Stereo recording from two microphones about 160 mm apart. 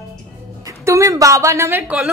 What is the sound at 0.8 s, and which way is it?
A woman's voice, 20° right (ahead or behind).